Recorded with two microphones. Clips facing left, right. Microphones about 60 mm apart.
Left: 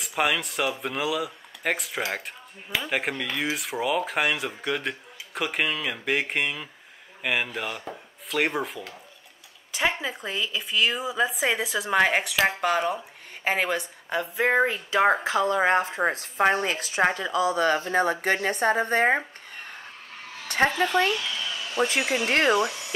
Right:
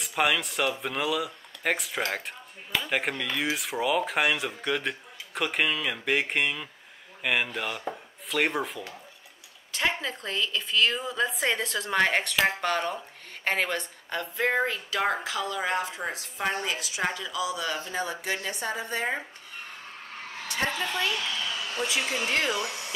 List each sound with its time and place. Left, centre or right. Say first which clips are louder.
0.0 s a woman's voice: left 1 dB; centre; by 19.2 s left
20.4 s a woman's voice: left 7 dB; left